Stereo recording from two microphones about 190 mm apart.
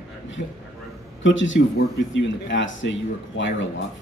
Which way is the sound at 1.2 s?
80° left.